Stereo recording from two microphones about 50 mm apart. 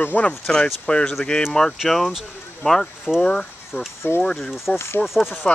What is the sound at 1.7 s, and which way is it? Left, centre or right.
Speech, centre.